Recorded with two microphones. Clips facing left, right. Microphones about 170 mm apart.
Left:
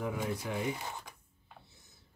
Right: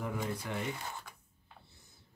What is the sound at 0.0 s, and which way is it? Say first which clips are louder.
Speech: left 2 dB; 10° left (ahead or behind).